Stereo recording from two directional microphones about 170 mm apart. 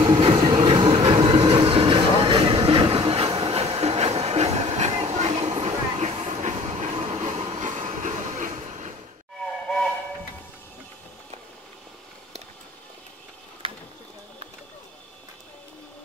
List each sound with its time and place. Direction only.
0.0 s vehicle: 30° right (ahead or behind)
7.5 s train: 45° right (ahead or behind)